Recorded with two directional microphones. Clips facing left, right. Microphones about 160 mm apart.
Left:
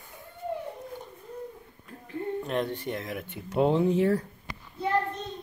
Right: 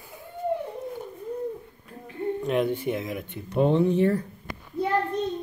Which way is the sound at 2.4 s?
5° right (ahead or behind).